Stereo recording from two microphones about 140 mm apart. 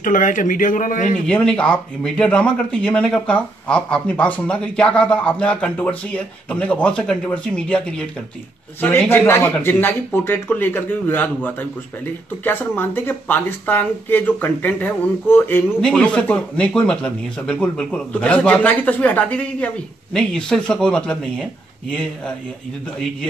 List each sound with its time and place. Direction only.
0.0 s speech: 70° left (ahead or behind)
1.2 s speech: 5° left (ahead or behind)